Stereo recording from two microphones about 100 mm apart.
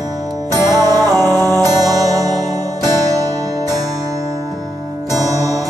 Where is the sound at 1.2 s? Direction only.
25° left (ahead or behind).